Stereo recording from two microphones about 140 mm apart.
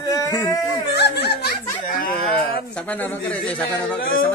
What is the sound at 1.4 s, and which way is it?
Giggle, 90° left.